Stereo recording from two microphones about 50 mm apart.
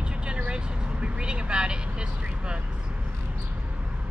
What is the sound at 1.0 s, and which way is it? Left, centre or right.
Speech, centre.